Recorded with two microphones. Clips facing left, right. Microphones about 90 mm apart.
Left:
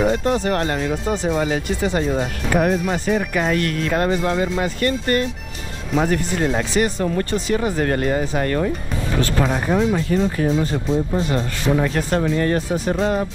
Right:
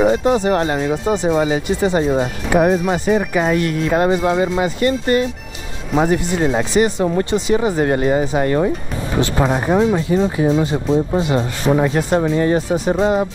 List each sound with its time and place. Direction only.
0.0 s speech: 5° right (ahead or behind)
8.5 s speech: 20° right (ahead or behind)
9.8 s speech: 5° right (ahead or behind)
12.6 s speech: centre (ahead or behind)